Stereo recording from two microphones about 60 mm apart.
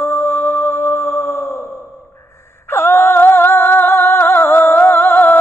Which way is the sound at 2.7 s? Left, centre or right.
Left.